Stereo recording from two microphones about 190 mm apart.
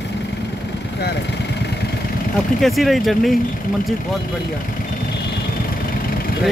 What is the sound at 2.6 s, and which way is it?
Speech, centre (ahead or behind).